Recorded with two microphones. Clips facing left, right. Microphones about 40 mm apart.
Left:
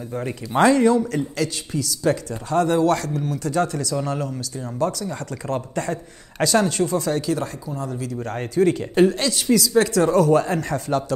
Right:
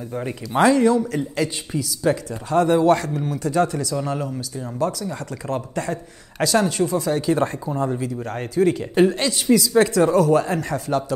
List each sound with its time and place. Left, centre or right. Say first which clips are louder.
0.1 s speech: even; centre
1.3 s speech: right 1 dB; centre
7.3 s speech: right 6 dB; right
8.3 s speech: left 1 dB; centre